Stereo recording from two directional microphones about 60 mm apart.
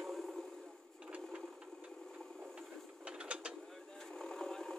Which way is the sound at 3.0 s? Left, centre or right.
Centre.